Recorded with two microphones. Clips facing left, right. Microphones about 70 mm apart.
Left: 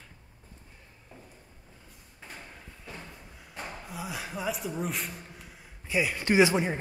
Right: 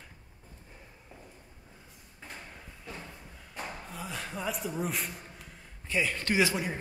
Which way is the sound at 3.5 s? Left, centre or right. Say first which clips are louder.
Even; centre.